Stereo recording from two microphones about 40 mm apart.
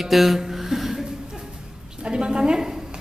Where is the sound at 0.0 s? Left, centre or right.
Centre.